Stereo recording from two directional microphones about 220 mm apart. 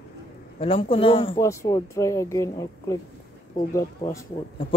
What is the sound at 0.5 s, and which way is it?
Speech, 25° left (ahead or behind).